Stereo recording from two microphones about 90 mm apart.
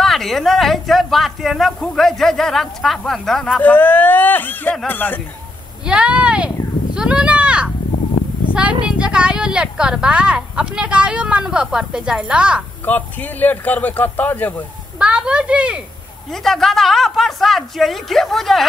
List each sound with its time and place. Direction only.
0.0 s speech: centre (ahead or behind)
3.6 s a man's voice: 20° left (ahead or behind)
5.9 s speech: 10° right (ahead or behind)
7.0 s a sound: 10° right (ahead or behind)
8.8 s speech: 10° right (ahead or behind)
12.8 s a man's voice: 20° left (ahead or behind)
15.0 s speech: 10° right (ahead or behind)
16.3 s speech: 5° left (ahead or behind)